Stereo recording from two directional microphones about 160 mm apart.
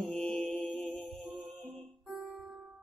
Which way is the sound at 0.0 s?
Centre (ahead or behind).